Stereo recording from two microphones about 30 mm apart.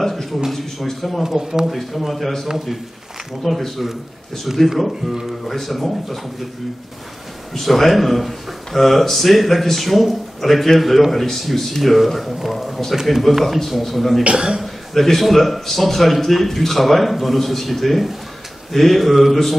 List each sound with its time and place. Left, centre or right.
0.1 s a man's voice: centre
1.2 s speech: centre
1.7 s speech: centre
2.5 s speech: centre
3.4 s speech: centre
5.5 s speech: centre
7.5 s speech: centre
14.3 s a man's voice: right
14.6 s speech: centre